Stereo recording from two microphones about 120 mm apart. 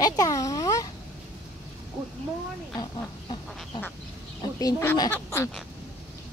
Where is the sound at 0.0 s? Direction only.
30° left (ahead or behind).